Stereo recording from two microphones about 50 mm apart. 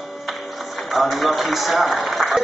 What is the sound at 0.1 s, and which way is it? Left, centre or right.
Music, centre.